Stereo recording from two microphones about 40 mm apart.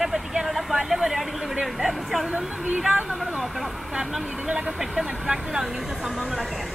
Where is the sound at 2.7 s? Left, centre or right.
Centre.